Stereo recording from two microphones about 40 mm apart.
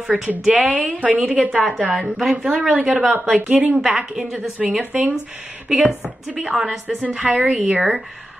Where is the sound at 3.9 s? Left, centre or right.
Centre.